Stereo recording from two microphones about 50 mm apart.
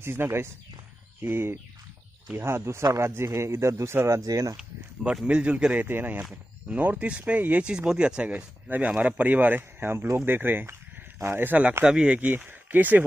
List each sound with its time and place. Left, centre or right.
0.0 s speech: right
3.0 s speech: right
4.6 s speech: centre
5.8 s speech: right
6.7 s speech: right
7.6 s speech: centre
8.6 s speech: right
9.6 s speech: right
10.2 s speech: right
10.7 s speech: right
11.8 s speech: centre
12.4 s speech: right